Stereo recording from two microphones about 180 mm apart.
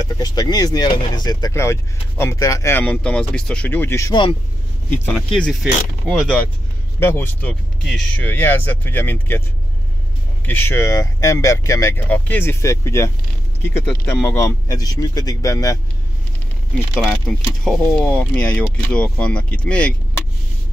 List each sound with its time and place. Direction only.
0.0 s speech: 20° left (ahead or behind)
4.9 s speech: 5° left (ahead or behind)
10.4 s speech: 10° left (ahead or behind)
16.7 s speech: centre (ahead or behind)